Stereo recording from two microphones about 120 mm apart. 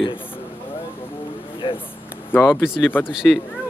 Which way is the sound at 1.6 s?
45° left (ahead or behind).